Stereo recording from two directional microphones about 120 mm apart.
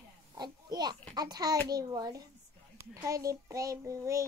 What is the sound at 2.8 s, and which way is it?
Child singing, 25° right (ahead or behind).